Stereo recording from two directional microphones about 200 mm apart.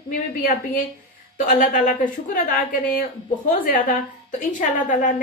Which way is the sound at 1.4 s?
45° left (ahead or behind).